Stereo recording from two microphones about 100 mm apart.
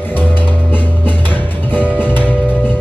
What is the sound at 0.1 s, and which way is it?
Music, 20° left (ahead or behind).